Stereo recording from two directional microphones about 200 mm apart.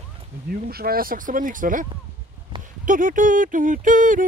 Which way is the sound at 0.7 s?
50° right (ahead or behind).